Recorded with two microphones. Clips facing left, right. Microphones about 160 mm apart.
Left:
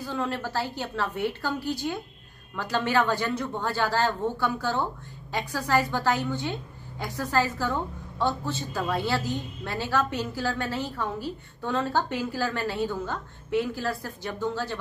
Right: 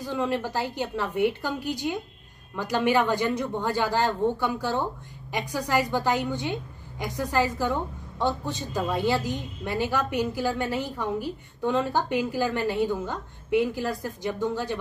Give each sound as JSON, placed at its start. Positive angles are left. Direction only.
{"t": 0.0, "sound": "a woman's voice", "side_deg": -15}